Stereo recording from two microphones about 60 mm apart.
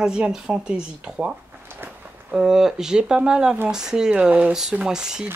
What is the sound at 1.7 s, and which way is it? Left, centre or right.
Walk, right.